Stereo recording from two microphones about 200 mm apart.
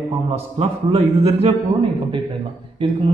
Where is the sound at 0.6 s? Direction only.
30° right (ahead or behind).